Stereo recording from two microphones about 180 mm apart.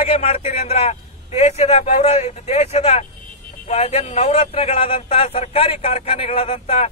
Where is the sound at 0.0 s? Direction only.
35° left (ahead or behind).